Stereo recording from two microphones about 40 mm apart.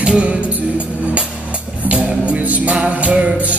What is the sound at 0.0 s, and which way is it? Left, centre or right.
Music, right.